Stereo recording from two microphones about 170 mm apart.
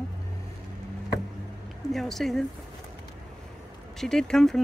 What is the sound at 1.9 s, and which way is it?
Speech, centre (ahead or behind).